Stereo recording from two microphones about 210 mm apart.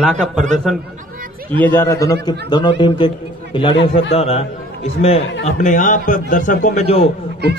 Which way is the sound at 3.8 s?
65° left (ahead or behind).